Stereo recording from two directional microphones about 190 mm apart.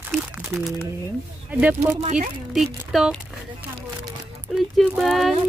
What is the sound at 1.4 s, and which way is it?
Speech, 10° right (ahead or behind).